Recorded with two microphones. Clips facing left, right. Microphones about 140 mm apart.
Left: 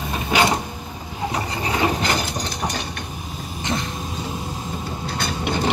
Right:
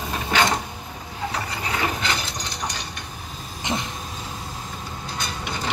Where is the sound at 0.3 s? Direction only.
10° left (ahead or behind).